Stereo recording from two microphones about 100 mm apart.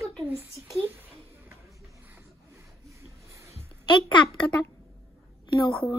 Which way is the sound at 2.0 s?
25° right (ahead or behind).